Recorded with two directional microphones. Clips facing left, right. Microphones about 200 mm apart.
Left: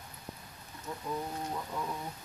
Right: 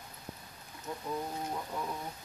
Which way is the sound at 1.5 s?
10° right (ahead or behind).